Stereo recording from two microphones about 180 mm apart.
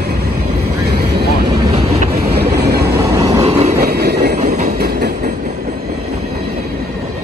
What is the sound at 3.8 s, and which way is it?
Vehicle, 60° right (ahead or behind).